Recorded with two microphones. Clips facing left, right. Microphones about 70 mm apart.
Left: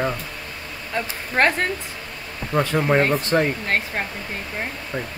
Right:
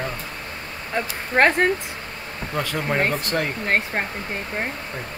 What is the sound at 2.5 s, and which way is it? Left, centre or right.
Speech, left.